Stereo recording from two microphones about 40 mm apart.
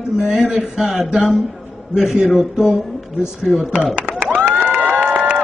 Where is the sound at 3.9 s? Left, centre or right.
Right.